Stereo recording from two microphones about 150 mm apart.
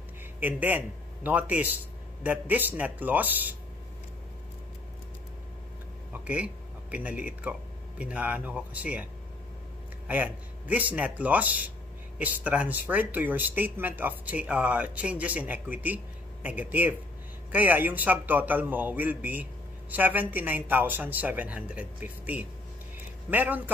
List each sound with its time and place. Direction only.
0.4 s a man's voice: 10° right (ahead or behind)
6.1 s speech: 10° right (ahead or behind)
10.0 s speech: 10° right (ahead or behind)